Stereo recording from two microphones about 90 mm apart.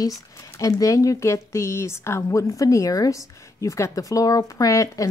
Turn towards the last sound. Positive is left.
turn(degrees=40)  # may be behind; listen again after turning